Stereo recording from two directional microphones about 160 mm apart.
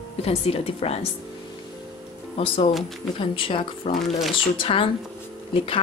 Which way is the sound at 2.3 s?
35° left (ahead or behind).